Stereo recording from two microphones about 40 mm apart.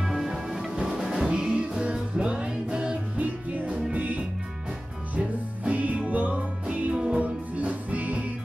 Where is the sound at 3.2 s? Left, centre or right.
Right.